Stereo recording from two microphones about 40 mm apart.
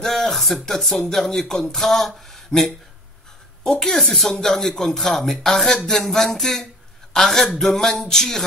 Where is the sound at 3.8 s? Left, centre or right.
Centre.